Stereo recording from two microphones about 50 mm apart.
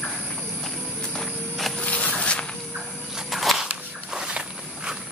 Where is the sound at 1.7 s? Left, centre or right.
Left.